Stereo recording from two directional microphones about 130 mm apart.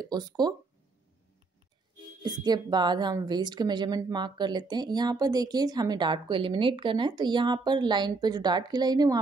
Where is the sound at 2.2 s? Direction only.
30° right (ahead or behind).